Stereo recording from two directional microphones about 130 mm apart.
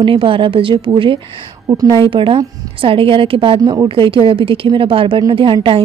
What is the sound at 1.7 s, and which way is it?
A woman's voice, 30° right (ahead or behind).